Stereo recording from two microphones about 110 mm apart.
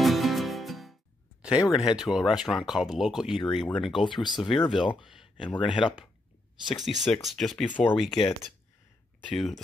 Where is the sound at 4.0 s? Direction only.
45° left (ahead or behind).